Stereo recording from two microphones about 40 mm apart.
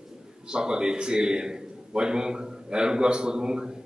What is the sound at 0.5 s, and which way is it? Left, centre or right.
A man's voice, centre.